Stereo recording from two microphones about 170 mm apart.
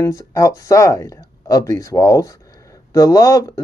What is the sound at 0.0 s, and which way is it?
Speech, 15° left (ahead or behind).